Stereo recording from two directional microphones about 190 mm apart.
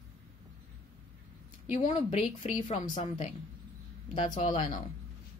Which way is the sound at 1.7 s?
40° left (ahead or behind).